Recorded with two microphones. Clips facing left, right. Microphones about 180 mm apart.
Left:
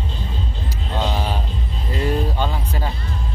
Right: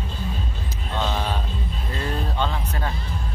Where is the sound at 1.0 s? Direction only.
10° left (ahead or behind).